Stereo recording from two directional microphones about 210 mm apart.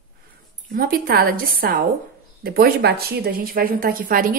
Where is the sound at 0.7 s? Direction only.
45° right (ahead or behind).